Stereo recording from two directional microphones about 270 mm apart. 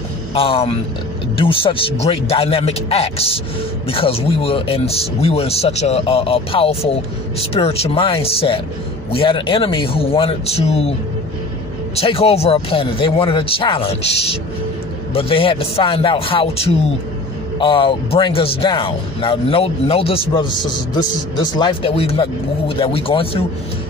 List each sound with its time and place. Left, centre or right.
0.3 s speech: left